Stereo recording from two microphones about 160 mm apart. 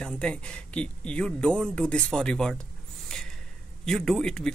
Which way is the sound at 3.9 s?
Centre (ahead or behind).